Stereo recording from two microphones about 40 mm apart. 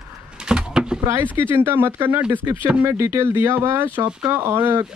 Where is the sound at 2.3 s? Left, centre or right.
Right.